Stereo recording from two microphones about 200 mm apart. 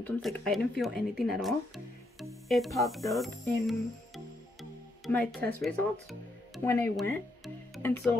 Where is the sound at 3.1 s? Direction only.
Centre (ahead or behind).